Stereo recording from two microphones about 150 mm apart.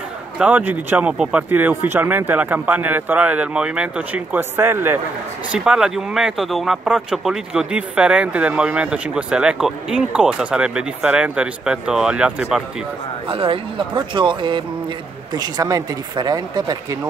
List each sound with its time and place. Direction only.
0.4 s speech: 10° right (ahead or behind)
13.3 s speech: 35° right (ahead or behind)